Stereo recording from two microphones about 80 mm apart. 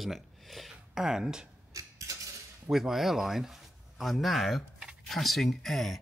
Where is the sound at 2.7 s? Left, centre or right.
Centre.